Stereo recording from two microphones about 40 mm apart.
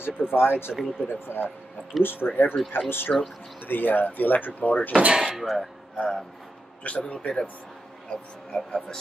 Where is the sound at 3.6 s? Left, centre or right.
Left.